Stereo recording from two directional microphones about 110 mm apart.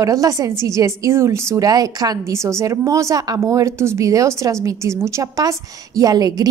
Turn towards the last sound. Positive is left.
turn(degrees=-35)  # may be behind; listen again after turning